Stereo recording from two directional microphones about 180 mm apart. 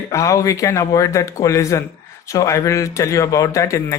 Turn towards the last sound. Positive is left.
turn(degrees=15)  # may be behind; listen again after turning